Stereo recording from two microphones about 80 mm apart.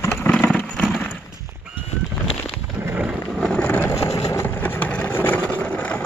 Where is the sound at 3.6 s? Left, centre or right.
Left.